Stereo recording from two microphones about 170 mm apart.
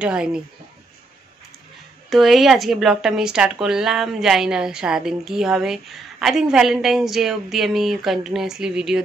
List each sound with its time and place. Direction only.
0.0 s speech: 5° right (ahead or behind)
2.0 s speech: centre (ahead or behind)